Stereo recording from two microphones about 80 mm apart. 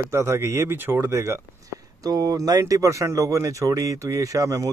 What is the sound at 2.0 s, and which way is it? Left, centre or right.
Speech, right.